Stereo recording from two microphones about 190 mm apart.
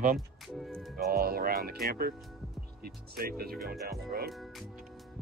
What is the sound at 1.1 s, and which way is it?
Speech, 50° right (ahead or behind).